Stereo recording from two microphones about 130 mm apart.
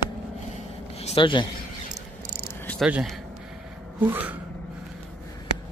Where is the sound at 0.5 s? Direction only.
55° left (ahead or behind).